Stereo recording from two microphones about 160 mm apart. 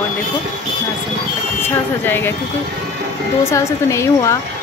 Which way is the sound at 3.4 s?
20° left (ahead or behind).